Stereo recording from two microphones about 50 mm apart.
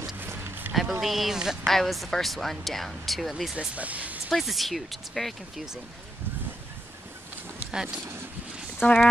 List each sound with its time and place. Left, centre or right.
0.3 s boat: right
1.0 s speech: centre
1.7 s speech: centre
3.5 s speech: right
4.3 s speech: centre
7.7 s speech: centre
8.8 s speech: left